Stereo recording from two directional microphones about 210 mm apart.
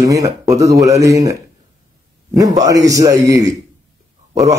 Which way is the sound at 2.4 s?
15° right (ahead or behind).